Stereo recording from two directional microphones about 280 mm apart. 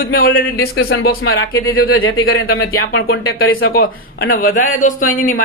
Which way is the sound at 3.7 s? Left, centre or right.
Left.